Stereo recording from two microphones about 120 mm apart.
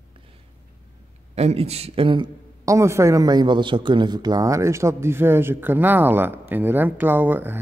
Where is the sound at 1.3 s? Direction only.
60° right (ahead or behind); by 2.3 s 45° right (ahead or behind).